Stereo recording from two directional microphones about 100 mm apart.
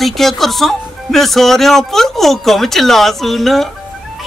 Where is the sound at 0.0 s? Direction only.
Centre (ahead or behind).